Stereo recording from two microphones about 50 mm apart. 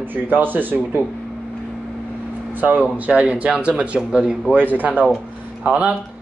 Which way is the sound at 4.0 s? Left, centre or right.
Centre.